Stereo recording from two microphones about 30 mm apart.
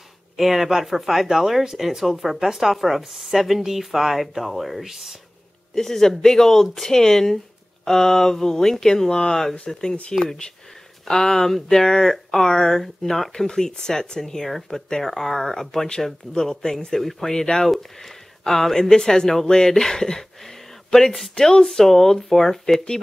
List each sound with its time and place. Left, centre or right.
0.4 s speech: centre
2.3 s speech: centre
5.8 s speech: centre
11.1 s speech: centre
13.3 s speech: centre
15.0 s speech: centre
17.6 s speech: centre